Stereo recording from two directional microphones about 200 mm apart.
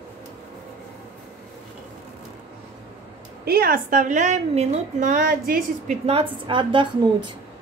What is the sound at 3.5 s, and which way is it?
A woman's voice, 50° right (ahead or behind).